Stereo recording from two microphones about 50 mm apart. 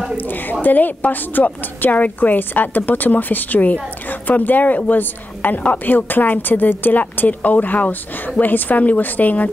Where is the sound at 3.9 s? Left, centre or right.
Left.